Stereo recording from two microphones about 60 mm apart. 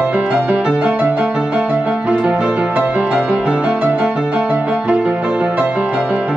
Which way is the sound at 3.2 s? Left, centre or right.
Centre.